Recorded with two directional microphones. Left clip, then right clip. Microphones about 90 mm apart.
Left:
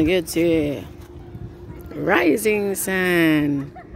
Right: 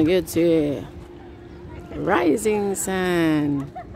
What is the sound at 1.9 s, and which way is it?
Speech, 10° left (ahead or behind).